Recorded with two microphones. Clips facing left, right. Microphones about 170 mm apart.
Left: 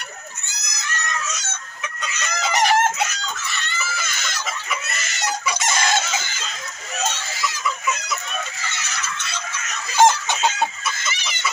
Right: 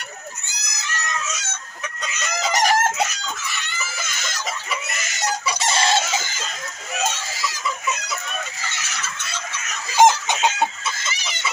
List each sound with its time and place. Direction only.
2.5 s chicken: 40° right (ahead or behind)
3.5 s a sound: 15° right (ahead or behind)
5.6 s chicken: 30° right (ahead or behind)
9.9 s chicken: 15° right (ahead or behind)